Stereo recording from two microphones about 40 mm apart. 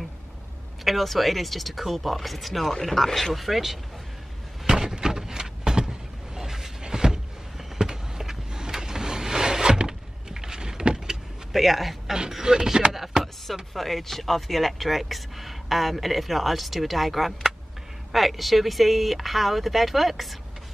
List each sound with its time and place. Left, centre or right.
0.8 s speech: centre
3.3 s speech: centre
4.6 s a sound: centre
11.5 s speech: centre
13.1 s chopping: centre
13.7 s speech: centre